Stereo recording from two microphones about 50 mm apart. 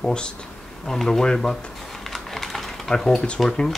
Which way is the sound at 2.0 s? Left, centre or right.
Centre.